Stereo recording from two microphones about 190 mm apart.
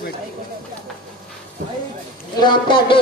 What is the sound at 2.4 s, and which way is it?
Music, 25° left (ahead or behind).